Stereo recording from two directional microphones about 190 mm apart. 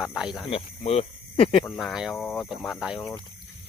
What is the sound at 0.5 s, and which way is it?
Speech, 30° left (ahead or behind).